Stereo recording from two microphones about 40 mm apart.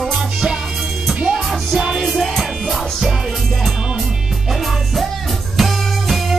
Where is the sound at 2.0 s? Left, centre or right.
Centre.